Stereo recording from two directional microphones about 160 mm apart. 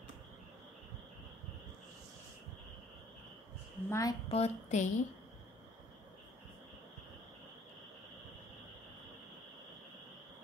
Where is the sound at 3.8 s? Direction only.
20° left (ahead or behind).